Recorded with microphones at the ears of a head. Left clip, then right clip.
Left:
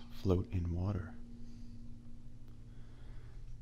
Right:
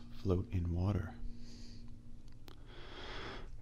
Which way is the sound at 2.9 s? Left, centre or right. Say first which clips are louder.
Right 16 dB; right.